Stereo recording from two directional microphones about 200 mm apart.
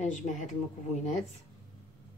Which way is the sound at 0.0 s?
35° left (ahead or behind).